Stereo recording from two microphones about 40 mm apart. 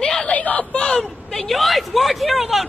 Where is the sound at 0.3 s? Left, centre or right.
Left.